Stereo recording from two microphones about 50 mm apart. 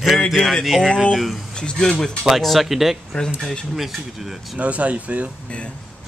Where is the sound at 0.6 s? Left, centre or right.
Centre.